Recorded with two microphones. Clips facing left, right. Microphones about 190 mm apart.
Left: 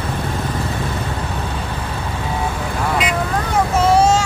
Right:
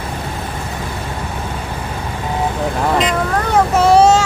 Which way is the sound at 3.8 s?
70° right (ahead or behind).